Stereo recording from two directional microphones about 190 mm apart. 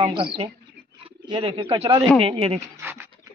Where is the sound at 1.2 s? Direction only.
25° right (ahead or behind).